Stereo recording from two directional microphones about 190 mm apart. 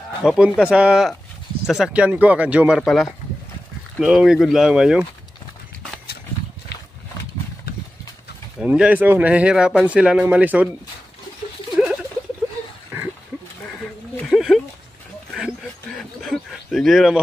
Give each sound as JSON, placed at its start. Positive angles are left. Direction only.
{"t": 0.2, "sound": "speech", "side_deg": -5}
{"t": 8.5, "sound": "speech", "side_deg": -5}
{"t": 14.1, "sound": "a sound", "side_deg": 0}